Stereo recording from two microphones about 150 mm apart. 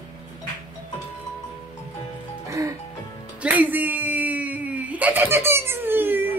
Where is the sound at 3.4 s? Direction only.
10° right (ahead or behind).